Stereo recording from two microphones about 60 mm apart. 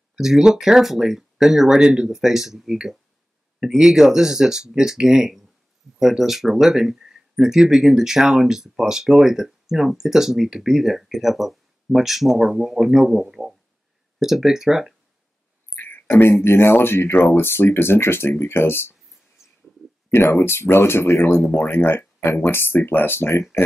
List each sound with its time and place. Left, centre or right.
0.1 s speech: centre
15.7 s a sound: left
16.4 s speech: left
20.1 s speech: left
21.5 s speech: left